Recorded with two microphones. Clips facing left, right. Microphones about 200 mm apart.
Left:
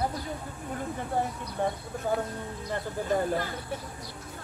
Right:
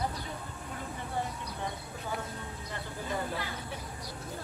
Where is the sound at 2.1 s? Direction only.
45° left (ahead or behind).